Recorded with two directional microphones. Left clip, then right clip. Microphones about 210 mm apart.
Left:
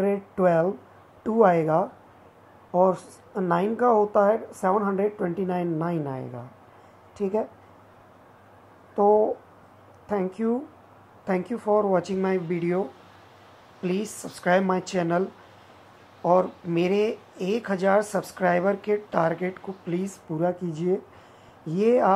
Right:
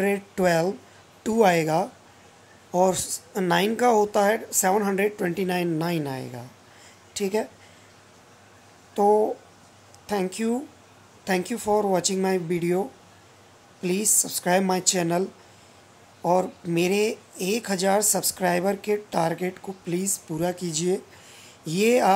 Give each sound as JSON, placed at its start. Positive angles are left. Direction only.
{"t": 0.0, "sound": "speech", "side_deg": -15}
{"t": 8.9, "sound": "speech", "side_deg": -15}
{"t": 13.8, "sound": "speech", "side_deg": -15}
{"t": 16.3, "sound": "speech", "side_deg": -15}